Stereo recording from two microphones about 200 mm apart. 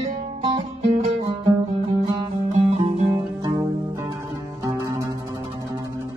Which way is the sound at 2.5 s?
30° right (ahead or behind).